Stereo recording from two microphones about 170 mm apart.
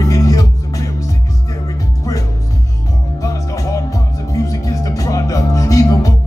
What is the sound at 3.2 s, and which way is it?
Music, 20° left (ahead or behind).